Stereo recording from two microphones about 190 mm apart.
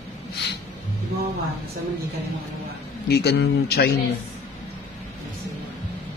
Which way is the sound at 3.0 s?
60° left (ahead or behind).